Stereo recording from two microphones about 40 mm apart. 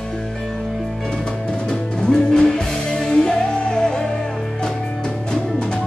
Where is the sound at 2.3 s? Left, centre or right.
Centre.